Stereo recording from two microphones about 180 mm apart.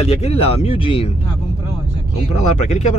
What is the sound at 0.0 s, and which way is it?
Speech, 35° left (ahead or behind).